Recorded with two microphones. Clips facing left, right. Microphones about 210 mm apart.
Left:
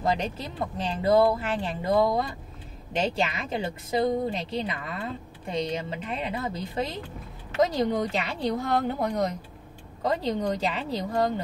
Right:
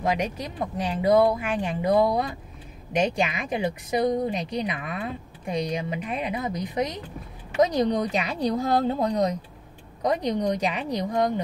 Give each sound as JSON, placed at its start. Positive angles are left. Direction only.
{"t": 0.0, "sound": "speech", "side_deg": -15}